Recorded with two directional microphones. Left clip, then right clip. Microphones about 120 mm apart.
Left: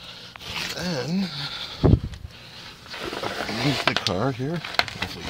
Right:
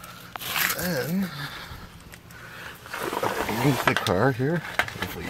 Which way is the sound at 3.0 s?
Centre (ahead or behind).